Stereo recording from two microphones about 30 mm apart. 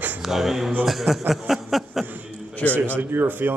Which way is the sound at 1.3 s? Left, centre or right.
Centre.